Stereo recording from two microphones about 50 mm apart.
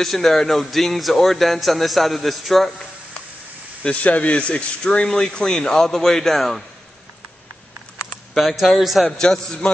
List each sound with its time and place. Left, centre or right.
0.0 s speech: centre
3.8 s a man's voice: left
5.0 s a man's voice: centre
8.4 s speech: centre
9.2 s a man's voice: centre